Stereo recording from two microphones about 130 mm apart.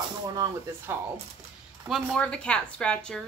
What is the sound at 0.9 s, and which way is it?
Speech, 20° right (ahead or behind).